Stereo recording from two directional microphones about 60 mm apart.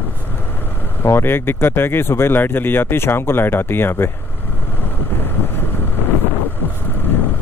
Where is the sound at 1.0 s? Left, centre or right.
Left.